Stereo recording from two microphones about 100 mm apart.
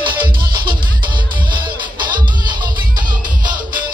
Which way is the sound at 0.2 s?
55° right (ahead or behind).